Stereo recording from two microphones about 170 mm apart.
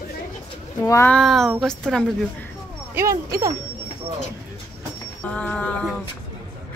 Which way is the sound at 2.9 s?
20° right (ahead or behind).